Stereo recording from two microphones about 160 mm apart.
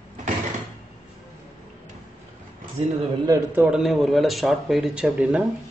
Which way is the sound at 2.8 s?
35° right (ahead or behind).